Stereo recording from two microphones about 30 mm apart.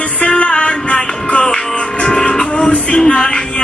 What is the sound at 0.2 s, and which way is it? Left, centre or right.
Music, left.